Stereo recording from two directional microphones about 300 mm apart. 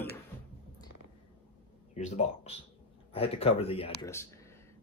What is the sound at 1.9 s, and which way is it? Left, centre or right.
Speech, left.